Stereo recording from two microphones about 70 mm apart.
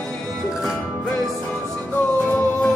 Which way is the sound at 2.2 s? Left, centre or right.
Left.